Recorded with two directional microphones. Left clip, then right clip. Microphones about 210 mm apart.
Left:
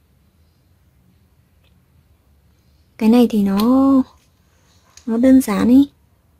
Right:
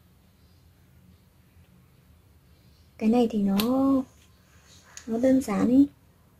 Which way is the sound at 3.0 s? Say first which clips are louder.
Left 9 dB; 30° left (ahead or behind).